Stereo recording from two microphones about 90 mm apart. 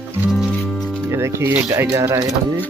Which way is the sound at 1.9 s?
40° right (ahead or behind).